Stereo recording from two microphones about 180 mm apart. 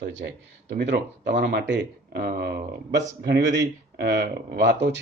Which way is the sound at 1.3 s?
60° right (ahead or behind).